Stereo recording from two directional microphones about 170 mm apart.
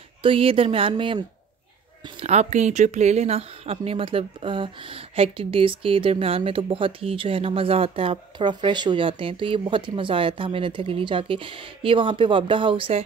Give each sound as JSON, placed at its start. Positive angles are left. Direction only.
{"t": 0.2, "sound": "a woman's voice", "side_deg": -30}
{"t": 2.1, "sound": "a woman's voice", "side_deg": -40}